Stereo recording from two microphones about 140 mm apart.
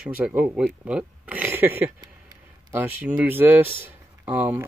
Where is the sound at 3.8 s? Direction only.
15° right (ahead or behind).